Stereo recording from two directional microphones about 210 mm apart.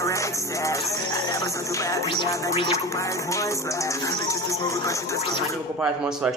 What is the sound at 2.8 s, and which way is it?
Music, 15° left (ahead or behind).